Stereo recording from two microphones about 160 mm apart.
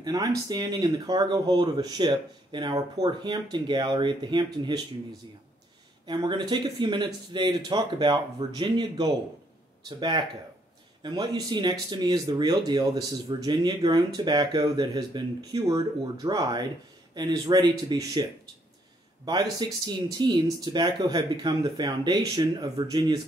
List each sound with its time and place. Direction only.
0.0 s speech: 25° right (ahead or behind)
6.0 s speech: 30° right (ahead or behind)
19.2 s speech: 25° right (ahead or behind)